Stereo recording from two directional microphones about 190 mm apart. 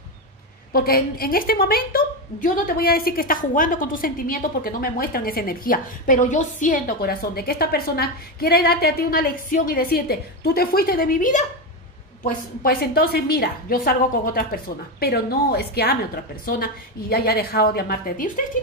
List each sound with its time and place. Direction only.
0.7 s a woman's voice: 50° left (ahead or behind)